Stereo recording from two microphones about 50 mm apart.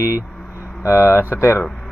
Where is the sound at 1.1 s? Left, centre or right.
Right.